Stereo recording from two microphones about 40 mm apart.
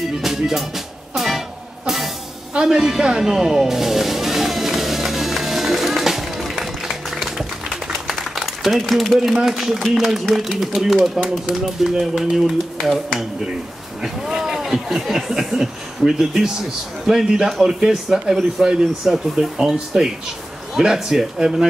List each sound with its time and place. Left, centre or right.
0.5 s music: centre
2.5 s music: centre
7.2 s a sound: centre
8.4 s speech: centre